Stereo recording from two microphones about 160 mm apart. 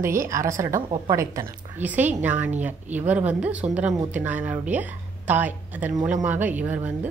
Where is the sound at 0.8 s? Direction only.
30° right (ahead or behind).